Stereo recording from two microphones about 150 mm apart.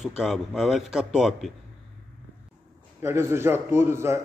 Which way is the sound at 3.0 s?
15° right (ahead or behind).